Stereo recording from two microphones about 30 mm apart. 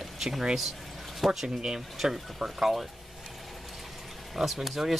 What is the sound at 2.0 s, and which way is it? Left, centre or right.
Speech, centre.